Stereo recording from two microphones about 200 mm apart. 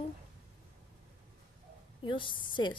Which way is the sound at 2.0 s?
25° left (ahead or behind).